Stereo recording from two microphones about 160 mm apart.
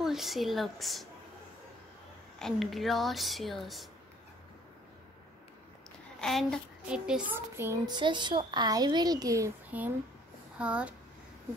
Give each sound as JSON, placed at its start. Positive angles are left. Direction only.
{"t": 0.0, "sound": "speech", "side_deg": 0}
{"t": 2.3, "sound": "speech", "side_deg": 0}
{"t": 6.2, "sound": "child singing", "side_deg": 0}
{"t": 10.6, "sound": "speech", "side_deg": -10}